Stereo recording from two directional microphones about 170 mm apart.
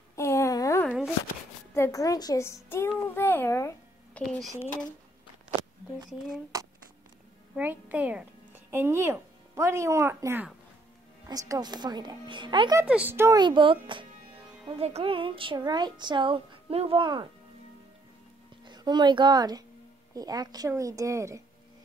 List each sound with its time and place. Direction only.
0.1 s a sound: 15° left (ahead or behind)
0.8 s a sound: 5° right (ahead or behind)
1.7 s a child's voice: 15° left (ahead or behind)
3.2 s a sound: 10° left (ahead or behind)
4.2 s speech: centre (ahead or behind)
6.0 s speech: centre (ahead or behind)
7.5 s speech: 10° right (ahead or behind); by 12.8 s 25° right (ahead or behind)
12.8 s speech: 10° right (ahead or behind)
13.4 s speech: 30° right (ahead or behind)
18.7 s speech: 25° right (ahead or behind)